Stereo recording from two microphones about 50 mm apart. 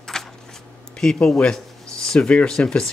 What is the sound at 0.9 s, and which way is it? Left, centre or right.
Speech, centre.